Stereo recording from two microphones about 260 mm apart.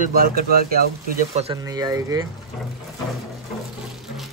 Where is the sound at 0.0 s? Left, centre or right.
Right.